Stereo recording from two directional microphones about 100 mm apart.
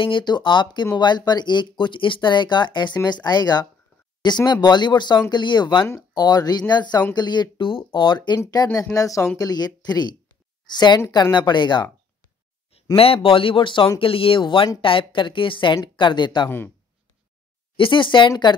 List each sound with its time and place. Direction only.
0.0 s speech: 55° left (ahead or behind)
12.9 s a woman's voice: 70° left (ahead or behind)
13.9 s a woman's voice: 65° left (ahead or behind); by 16.4 s 50° left (ahead or behind)
16.4 s speech: 20° left (ahead or behind)
17.7 s a woman's voice: 55° left (ahead or behind)